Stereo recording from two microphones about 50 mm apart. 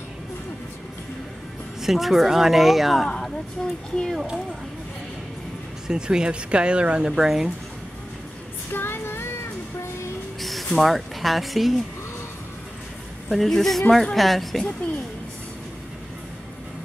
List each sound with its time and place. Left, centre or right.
1.8 s speech: centre
3.6 s speech: centre
5.9 s speech: centre
8.7 s female singing: left
10.4 s speech: centre
13.3 s speech: centre